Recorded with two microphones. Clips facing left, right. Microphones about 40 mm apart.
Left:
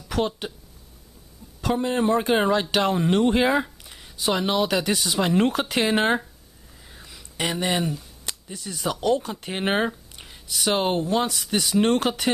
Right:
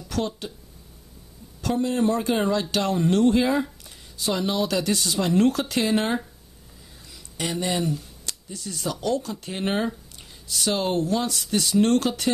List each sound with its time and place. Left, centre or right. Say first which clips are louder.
0.1 s speech: left 3 dB; left
1.6 s speech: even; left
3.6 s a sound: right 2 dB; left
4.0 s speech: left 2 dB; left
7.3 s speech: left 2 dB; left